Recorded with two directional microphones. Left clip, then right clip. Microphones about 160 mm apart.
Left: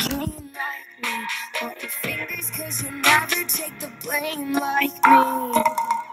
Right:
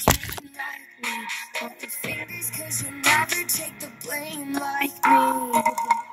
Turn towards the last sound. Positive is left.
turn(degrees=35)  # may be behind; listen again after turning